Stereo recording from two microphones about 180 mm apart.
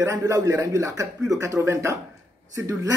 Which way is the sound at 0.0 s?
15° right (ahead or behind).